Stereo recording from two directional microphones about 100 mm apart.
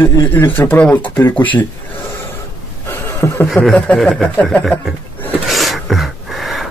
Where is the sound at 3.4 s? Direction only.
Centre (ahead or behind).